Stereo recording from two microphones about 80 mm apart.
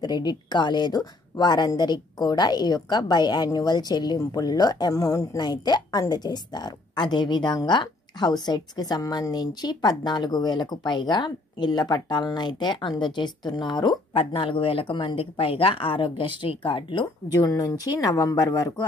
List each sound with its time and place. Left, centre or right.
0.0 s a woman's voice: left
8.5 s a woman's voice: left
14.4 s speech: left
17.3 s speech: left